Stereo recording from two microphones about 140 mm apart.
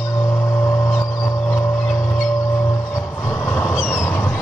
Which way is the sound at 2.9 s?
20° left (ahead or behind).